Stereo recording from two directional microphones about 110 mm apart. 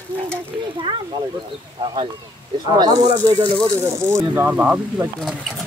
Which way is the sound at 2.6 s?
40° right (ahead or behind).